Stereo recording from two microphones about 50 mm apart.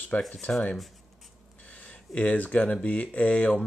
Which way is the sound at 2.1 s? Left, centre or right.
Left.